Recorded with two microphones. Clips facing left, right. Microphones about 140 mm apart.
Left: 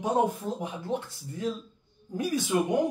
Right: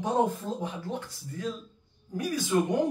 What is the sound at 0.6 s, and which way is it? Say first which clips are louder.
Speech: even; 25° left (ahead or behind).